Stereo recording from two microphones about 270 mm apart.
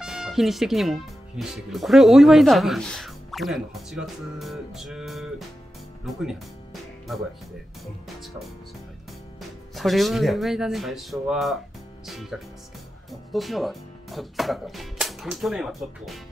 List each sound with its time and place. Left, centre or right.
0.0 s speech: centre
6.1 s music: centre
9.8 s speech: centre